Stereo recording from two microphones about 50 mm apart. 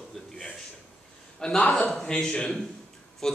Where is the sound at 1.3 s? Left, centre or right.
Left.